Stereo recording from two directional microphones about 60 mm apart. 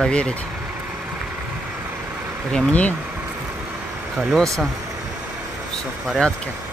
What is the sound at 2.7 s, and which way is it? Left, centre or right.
Speech, left.